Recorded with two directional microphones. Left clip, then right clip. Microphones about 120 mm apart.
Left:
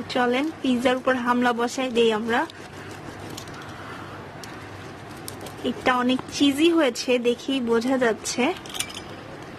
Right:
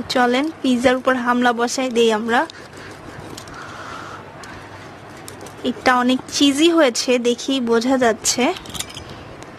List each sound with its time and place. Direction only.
0.1 s a woman's voice: 30° right (ahead or behind)
5.6 s a woman's voice: 30° right (ahead or behind)